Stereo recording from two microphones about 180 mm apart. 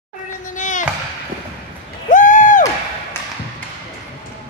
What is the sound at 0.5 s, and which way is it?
Music, 45° left (ahead or behind).